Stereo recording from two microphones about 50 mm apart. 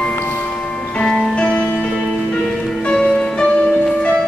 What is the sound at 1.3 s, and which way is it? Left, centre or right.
Music, centre.